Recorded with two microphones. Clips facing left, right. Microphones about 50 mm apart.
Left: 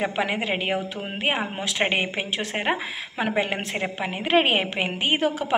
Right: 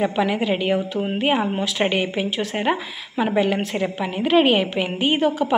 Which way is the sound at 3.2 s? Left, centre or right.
Left.